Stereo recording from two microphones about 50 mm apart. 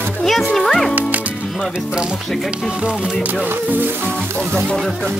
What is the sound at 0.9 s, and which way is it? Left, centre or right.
Speech, right.